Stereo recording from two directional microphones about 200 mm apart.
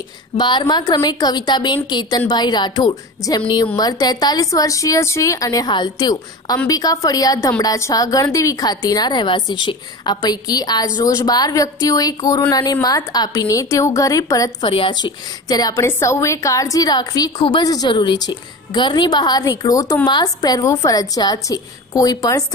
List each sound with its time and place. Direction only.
0.4 s a woman's voice: 20° left (ahead or behind)